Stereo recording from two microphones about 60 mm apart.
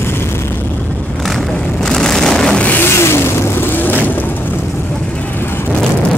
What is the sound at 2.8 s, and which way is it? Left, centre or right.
Vehicle, left.